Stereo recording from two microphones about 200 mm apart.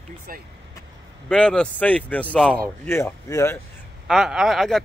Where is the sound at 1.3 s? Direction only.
5° left (ahead or behind).